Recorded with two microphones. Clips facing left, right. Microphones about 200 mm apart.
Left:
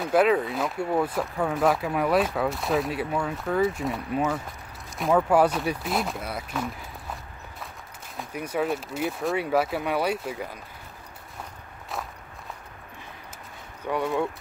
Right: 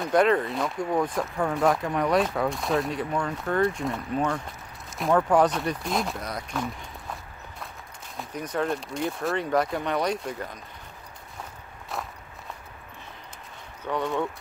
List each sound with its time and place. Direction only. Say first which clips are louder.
0.0 s speech: even; 5° left (ahead or behind)
8.2 s speech: left 1 dB; 10° left (ahead or behind)
13.8 s speech: left 1 dB; 10° left (ahead or behind)